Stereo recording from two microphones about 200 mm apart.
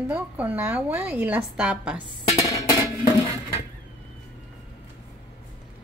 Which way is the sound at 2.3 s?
15° left (ahead or behind).